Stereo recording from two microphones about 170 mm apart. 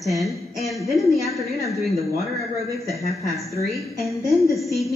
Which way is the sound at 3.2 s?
20° left (ahead or behind).